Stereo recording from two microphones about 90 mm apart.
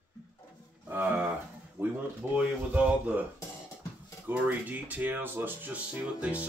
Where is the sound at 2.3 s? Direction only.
15° right (ahead or behind).